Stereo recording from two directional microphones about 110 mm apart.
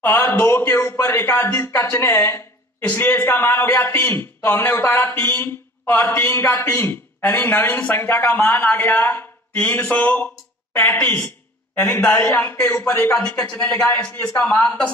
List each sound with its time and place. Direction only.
0.0 s a man's voice: 20° left (ahead or behind)